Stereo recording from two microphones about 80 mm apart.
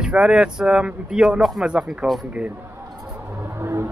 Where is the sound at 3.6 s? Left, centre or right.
Right.